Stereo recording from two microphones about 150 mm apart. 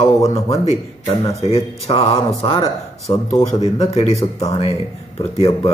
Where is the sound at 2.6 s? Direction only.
20° left (ahead or behind).